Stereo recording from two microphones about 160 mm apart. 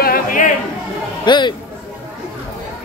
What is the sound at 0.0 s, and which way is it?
Chatter, 60° left (ahead or behind).